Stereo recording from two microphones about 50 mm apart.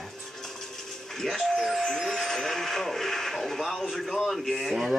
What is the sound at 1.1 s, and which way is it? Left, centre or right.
A man's voice, centre.